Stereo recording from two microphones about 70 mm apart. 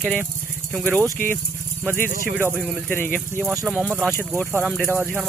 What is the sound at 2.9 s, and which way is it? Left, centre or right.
Speech, left.